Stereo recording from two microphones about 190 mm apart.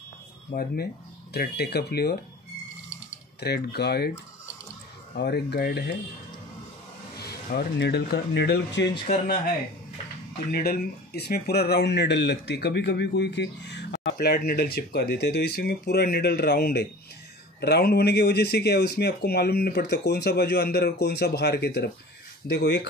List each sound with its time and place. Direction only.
0.5 s speech: 60° left (ahead or behind)
3.3 s speech: 60° left (ahead or behind)
5.1 s speech: 60° left (ahead or behind)
7.2 s speech: 55° left (ahead or behind)
10.5 s speech: 55° left (ahead or behind)